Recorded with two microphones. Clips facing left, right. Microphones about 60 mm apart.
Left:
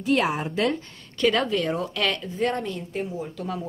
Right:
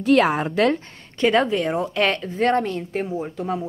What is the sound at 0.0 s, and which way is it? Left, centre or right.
Speech, right.